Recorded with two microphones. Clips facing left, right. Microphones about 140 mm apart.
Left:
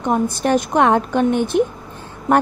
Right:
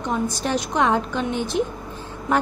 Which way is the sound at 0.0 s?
55° left (ahead or behind).